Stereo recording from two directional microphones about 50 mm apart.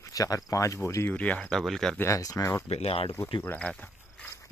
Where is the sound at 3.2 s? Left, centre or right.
Left.